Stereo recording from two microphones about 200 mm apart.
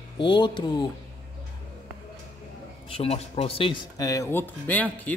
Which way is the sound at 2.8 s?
30° left (ahead or behind).